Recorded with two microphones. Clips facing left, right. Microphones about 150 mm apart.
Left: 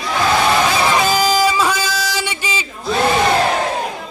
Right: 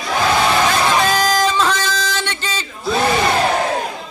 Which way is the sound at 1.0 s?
5° left (ahead or behind).